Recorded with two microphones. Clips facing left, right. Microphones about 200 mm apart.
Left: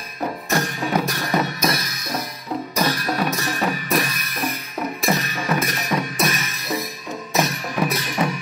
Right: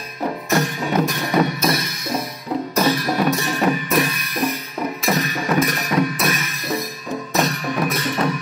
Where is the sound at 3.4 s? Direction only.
Centre (ahead or behind).